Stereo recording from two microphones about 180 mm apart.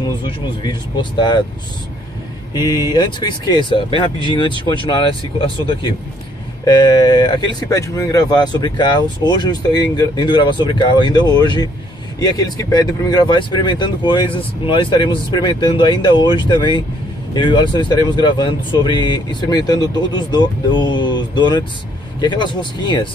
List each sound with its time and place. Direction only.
0.2 s speech: 25° left (ahead or behind)
2.5 s speech: 20° left (ahead or behind)